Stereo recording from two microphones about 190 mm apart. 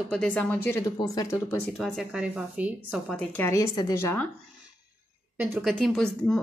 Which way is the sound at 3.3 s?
15° left (ahead or behind).